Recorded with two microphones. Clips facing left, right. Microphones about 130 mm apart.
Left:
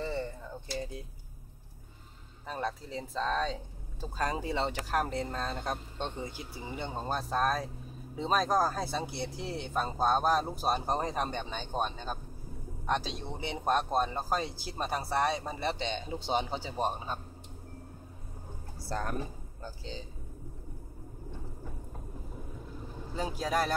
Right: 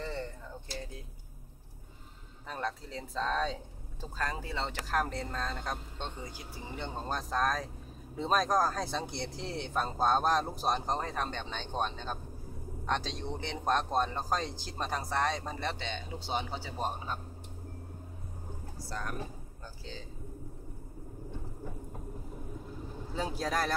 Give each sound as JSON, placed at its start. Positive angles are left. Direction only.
{"t": 0.0, "sound": "a sound", "side_deg": 10}
{"t": 2.4, "sound": "speech", "side_deg": 5}
{"t": 4.2, "sound": "speech", "side_deg": 20}
{"t": 18.9, "sound": "speech", "side_deg": 40}
{"t": 19.6, "sound": "speech", "side_deg": 20}
{"t": 23.1, "sound": "speech", "side_deg": 0}